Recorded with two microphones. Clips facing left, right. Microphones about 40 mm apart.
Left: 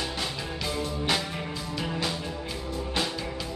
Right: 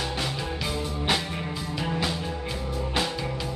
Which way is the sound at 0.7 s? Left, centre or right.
Centre.